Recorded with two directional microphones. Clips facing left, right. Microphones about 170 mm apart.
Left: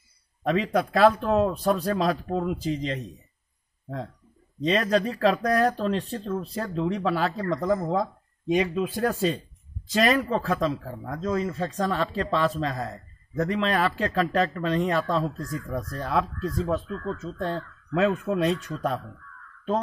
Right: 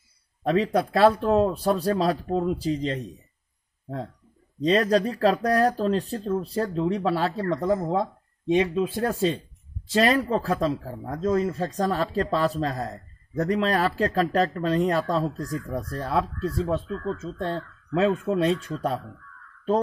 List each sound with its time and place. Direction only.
0.4 s speech: 35° right (ahead or behind)
4.6 s speech: 35° right (ahead or behind)